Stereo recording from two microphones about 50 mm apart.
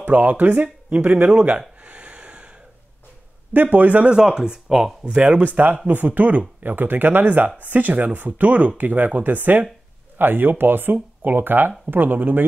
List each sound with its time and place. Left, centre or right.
0.0 s speech: right
1.8 s a sound: right
3.5 s speech: right
4.1 s speech: centre
5.0 s speech: right